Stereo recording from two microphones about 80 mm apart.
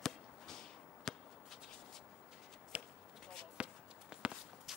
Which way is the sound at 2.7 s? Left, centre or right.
Centre.